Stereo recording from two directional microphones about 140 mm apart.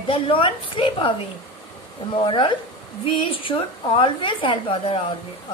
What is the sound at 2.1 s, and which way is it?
A woman's voice, 35° left (ahead or behind).